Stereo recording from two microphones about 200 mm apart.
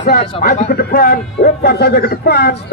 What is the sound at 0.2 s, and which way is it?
A man's voice, 35° left (ahead or behind).